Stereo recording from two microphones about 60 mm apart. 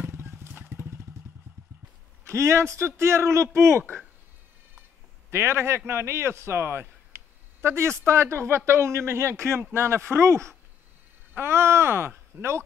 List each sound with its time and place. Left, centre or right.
0.0 s horse: right
0.5 s vehicle: right
2.2 s speech: right
5.3 s speech: right